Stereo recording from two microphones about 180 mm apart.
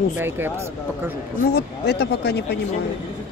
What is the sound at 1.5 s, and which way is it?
Speech, 60° left (ahead or behind).